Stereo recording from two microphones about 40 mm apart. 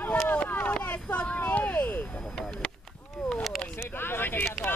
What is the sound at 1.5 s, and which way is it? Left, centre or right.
Vehicle, left.